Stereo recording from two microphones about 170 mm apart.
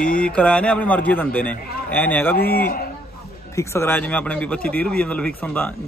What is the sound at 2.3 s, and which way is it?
Speech, 65° left (ahead or behind).